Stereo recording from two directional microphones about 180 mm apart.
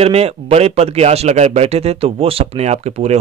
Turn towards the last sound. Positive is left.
turn(degrees=-35)  # may be behind; listen again after turning